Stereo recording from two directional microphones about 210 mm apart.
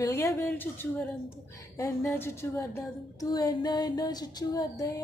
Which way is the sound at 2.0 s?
10° left (ahead or behind).